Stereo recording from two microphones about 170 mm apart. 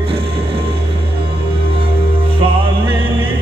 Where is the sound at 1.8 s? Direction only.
30° right (ahead or behind).